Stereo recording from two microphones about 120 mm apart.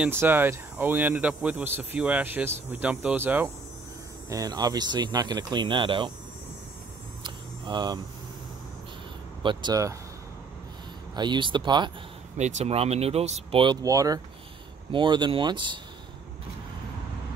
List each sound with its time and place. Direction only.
0.0 s speech: 20° right (ahead or behind)
4.3 s speech: 30° right (ahead or behind)
7.2 s a sound: 40° right (ahead or behind)
9.4 s speech: 40° right (ahead or behind)
11.1 s speech: 40° right (ahead or behind)
12.4 s speech: 75° right (ahead or behind)
13.8 s speech: 30° right (ahead or behind)
14.9 s speech: 40° right (ahead or behind)